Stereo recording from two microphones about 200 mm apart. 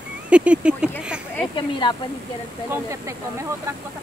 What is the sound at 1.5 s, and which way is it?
Speech, 25° left (ahead or behind).